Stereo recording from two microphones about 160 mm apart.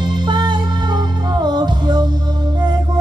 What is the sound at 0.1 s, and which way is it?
Music, 30° right (ahead or behind).